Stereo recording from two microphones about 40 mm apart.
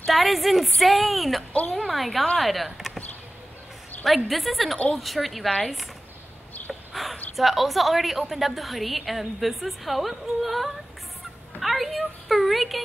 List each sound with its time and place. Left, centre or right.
0.0 s a woman's voice: centre
1.5 s a woman's voice: left
1.8 s a woman's voice: centre
4.0 s a woman's voice: centre
6.7 s a sound: centre
7.3 s a woman's voice: centre